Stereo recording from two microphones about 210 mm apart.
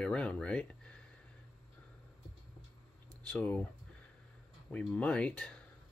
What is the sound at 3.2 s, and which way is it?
Speech, 5° left (ahead or behind).